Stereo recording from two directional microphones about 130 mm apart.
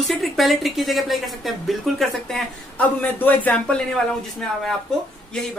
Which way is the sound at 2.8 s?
15° left (ahead or behind).